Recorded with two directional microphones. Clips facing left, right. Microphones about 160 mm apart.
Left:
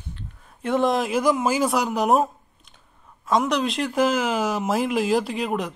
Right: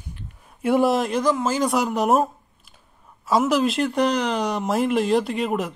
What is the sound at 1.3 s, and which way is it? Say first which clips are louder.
Speech: left 1 dB; 10° left (ahead or behind).